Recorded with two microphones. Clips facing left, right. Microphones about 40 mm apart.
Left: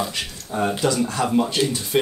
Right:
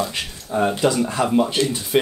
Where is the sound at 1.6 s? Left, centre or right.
Left.